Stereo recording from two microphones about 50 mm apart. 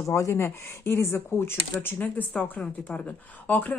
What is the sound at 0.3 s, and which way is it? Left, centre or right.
Speech, left.